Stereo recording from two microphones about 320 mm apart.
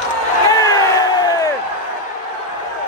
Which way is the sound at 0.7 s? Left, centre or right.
Centre.